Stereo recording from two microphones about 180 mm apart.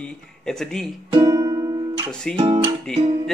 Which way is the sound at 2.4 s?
30° right (ahead or behind).